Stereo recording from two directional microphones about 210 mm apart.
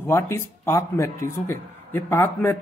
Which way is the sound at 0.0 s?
10° left (ahead or behind).